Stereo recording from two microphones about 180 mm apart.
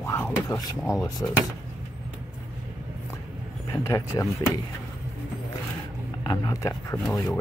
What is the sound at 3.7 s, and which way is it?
Speech, 20° left (ahead or behind).